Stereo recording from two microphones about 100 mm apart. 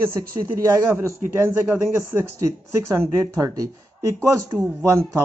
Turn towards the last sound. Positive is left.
turn(degrees=-30)  # may be behind; listen again after turning